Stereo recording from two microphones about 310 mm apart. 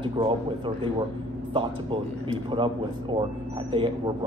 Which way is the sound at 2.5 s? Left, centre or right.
Centre.